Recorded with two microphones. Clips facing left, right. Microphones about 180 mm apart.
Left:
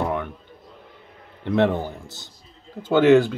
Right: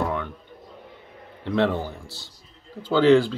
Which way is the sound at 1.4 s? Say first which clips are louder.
Left 2 dB; 20° left (ahead or behind).